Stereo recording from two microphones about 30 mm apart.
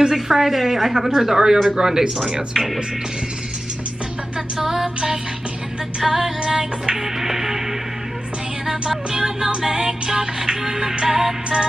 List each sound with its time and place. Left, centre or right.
0.0 s a woman's voice: centre
1.3 s music: right
1.8 s a woman's voice: centre
4.6 s a woman's voice: centre
5.9 s music: centre
7.2 s music: centre
8.6 s music: right